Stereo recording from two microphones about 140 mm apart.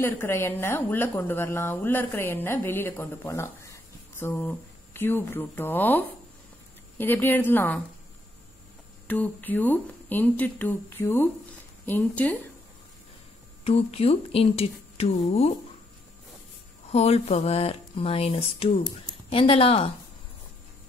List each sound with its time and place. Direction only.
0.0 s a woman's voice: 15° left (ahead or behind)
9.0 s a woman's voice: 10° left (ahead or behind)
13.7 s speech: 45° left (ahead or behind)
16.9 s speech: 50° left (ahead or behind)